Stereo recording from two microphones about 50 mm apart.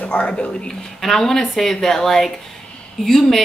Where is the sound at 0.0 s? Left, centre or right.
Left.